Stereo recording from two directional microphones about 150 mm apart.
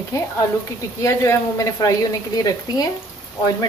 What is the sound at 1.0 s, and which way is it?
A woman's voice, 20° left (ahead or behind).